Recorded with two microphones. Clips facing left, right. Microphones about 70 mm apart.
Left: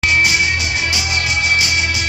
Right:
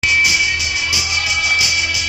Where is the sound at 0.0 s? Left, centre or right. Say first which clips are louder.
Left 1 dB; left.